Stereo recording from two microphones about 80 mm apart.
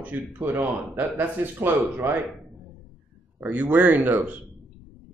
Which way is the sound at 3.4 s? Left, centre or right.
Right.